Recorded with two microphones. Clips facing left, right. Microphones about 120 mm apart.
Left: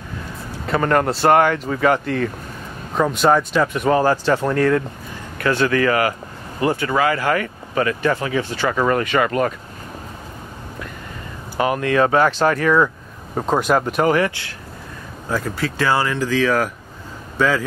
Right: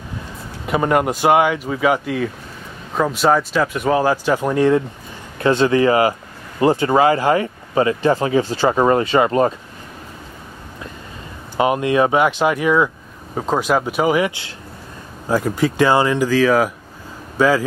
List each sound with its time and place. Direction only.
0.7 s speech: 10° right (ahead or behind)
11.5 s speech: 20° right (ahead or behind)